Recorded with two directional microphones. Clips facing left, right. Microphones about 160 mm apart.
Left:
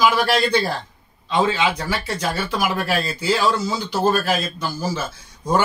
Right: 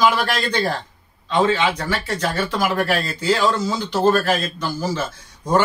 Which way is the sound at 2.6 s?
10° left (ahead or behind).